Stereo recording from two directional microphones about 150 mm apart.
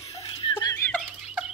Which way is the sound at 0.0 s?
40° left (ahead or behind).